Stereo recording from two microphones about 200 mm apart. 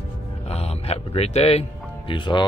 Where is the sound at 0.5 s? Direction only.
30° left (ahead or behind).